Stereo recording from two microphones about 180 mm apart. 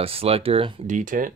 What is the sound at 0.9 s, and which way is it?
Speech, 45° right (ahead or behind).